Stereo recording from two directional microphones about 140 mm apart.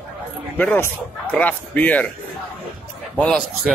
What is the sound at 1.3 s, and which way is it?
Speech, 10° left (ahead or behind).